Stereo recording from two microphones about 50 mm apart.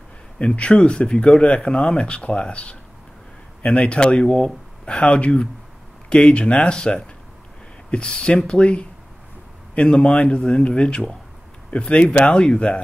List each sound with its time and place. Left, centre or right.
0.4 s speech: left